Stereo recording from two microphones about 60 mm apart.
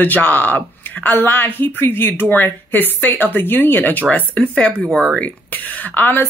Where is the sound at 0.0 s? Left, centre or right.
Left.